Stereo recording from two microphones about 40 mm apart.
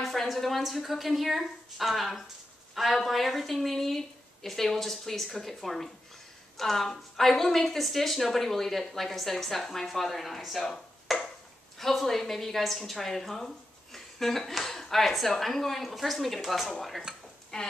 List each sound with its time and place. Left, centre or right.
0.0 s a woman's voice: centre
17.5 s speech: centre